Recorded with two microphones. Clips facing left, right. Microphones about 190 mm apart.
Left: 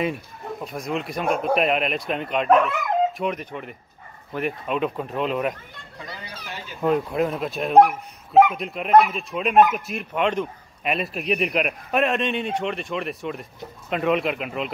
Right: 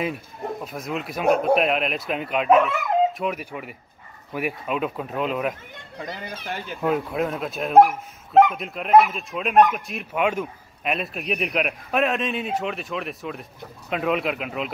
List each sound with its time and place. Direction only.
0.7 s speech: centre (ahead or behind)
6.4 s speech: 55° right (ahead or behind)
6.8 s speech: centre (ahead or behind)